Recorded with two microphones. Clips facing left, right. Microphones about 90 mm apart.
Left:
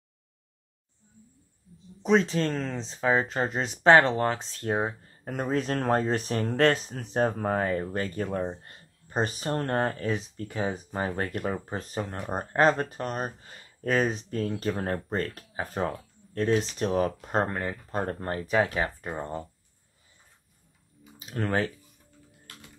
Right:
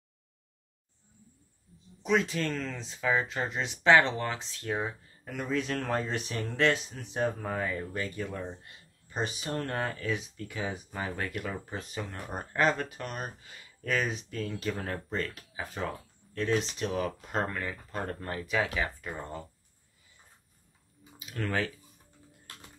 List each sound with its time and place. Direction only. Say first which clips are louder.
2.0 s speech: left 5 dB; 35° left (ahead or behind)
21.2 s speech: left 4 dB; 35° left (ahead or behind)